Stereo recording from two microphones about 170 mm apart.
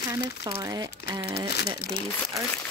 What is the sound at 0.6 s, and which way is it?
Speech, 25° right (ahead or behind).